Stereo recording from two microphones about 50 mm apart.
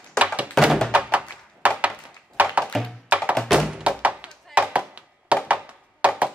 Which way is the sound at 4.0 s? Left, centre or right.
Right.